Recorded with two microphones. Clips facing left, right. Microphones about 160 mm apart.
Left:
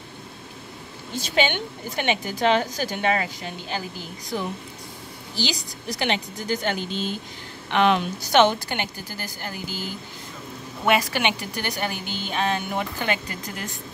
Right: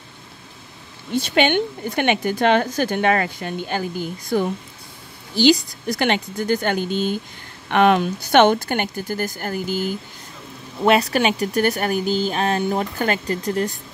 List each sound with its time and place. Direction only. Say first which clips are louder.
1.1 s a woman's voice: right 6 dB; 65° right (ahead or behind)
10.9 s speech: right 5 dB; 35° right (ahead or behind)